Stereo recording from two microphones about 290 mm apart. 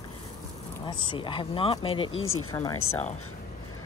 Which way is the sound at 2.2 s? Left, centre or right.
Left.